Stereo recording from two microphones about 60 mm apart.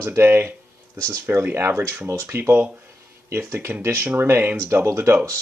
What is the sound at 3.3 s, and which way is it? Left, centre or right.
Speech, right.